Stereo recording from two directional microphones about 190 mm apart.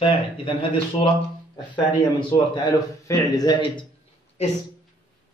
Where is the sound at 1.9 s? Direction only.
25° left (ahead or behind).